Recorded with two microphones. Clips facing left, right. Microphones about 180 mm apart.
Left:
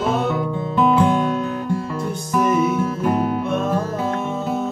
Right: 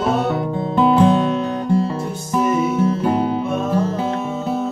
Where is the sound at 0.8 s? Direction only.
30° right (ahead or behind).